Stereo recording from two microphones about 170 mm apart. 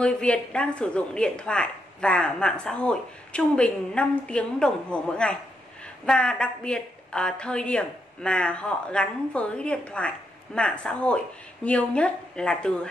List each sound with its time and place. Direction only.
0.0 s a woman's voice: 5° left (ahead or behind)